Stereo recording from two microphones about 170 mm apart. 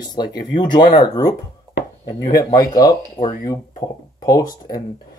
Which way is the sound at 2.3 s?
20° left (ahead or behind).